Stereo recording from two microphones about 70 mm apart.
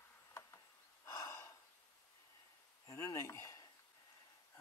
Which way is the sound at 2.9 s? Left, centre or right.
Left.